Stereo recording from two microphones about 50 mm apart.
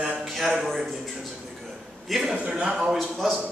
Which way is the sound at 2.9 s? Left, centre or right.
Centre.